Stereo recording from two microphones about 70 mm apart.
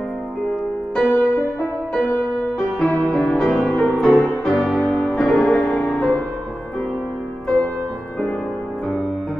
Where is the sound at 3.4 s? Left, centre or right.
Centre.